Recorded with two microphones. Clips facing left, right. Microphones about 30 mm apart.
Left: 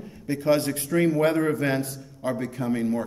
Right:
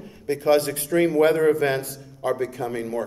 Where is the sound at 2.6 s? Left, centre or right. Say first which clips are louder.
Left 2 dB; right.